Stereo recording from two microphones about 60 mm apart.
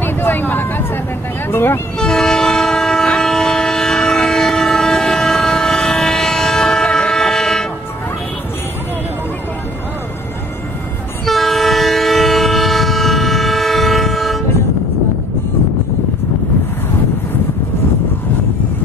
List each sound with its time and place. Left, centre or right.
0.0 s vehicle: left
1.5 s speech: left
2.0 s train: centre
11.2 s train: centre